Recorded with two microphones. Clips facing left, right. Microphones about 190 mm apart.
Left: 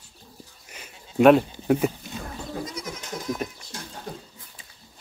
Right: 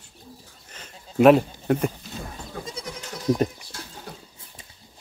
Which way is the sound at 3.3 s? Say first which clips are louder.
Right 8 dB; 35° right (ahead or behind).